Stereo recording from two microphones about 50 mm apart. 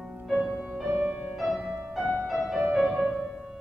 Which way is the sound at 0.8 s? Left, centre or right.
Right.